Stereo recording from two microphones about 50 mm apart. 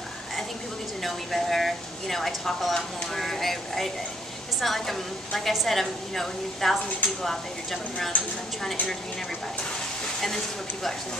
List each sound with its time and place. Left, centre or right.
1.0 s a woman's voice: centre
10.2 s a woman's voice: centre